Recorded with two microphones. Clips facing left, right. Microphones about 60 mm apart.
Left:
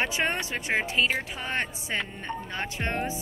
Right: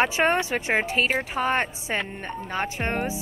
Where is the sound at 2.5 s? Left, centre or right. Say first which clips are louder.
Right 6 dB; right.